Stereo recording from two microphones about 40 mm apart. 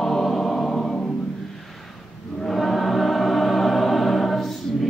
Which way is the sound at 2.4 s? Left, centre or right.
Centre.